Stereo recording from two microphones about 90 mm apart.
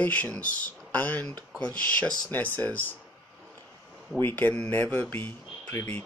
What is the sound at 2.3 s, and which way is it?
Speech, 20° left (ahead or behind).